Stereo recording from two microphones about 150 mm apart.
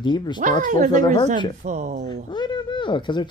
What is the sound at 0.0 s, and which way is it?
Speech, 30° left (ahead or behind).